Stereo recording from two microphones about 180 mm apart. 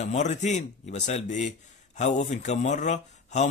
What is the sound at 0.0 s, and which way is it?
A man's voice, 40° left (ahead or behind).